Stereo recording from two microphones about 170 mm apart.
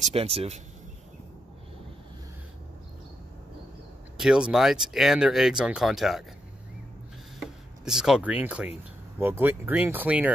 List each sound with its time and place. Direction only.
0.0 s speech: 35° right (ahead or behind)
4.2 s speech: 5° right (ahead or behind)
7.3 s a sound: 5° right (ahead or behind)
9.2 s speech: 10° right (ahead or behind)